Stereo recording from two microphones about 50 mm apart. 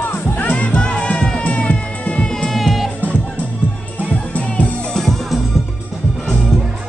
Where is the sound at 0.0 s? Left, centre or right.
Left.